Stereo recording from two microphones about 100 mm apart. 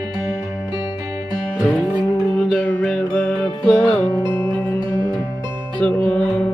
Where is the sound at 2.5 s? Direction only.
15° left (ahead or behind).